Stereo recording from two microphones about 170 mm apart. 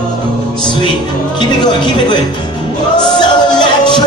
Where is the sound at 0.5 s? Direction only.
30° left (ahead or behind).